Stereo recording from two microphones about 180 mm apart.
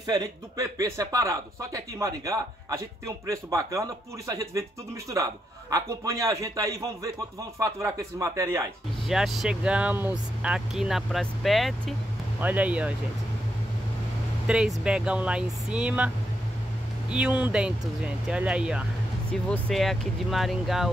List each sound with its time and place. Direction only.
0.0 s speech: 20° right (ahead or behind)
9.0 s speech: centre (ahead or behind)
14.8 s speech: 5° right (ahead or behind)
17.1 s speech: 5° right (ahead or behind)